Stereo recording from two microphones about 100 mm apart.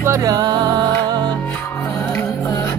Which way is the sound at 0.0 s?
30° right (ahead or behind).